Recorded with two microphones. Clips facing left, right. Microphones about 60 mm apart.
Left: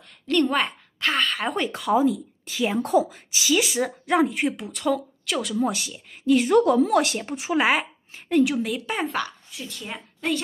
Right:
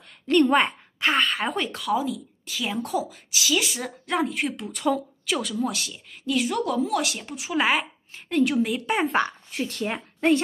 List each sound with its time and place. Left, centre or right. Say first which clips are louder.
0.3 s a woman's voice: right 3 dB; centre
1.1 s a woman's voice: even; centre
1.7 s a woman's voice: left 5 dB; left
4.7 s speech: even; centre
5.6 s speech: left 3 dB; left
6.3 s a woman's voice: left 7 dB; left
7.5 s a woman's voice: left 2 dB; centre
8.9 s speech: right 5 dB; right
9.5 s speech: right 7 dB; right